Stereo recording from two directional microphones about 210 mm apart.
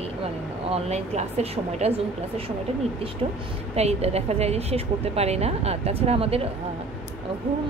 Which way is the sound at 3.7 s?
30° right (ahead or behind).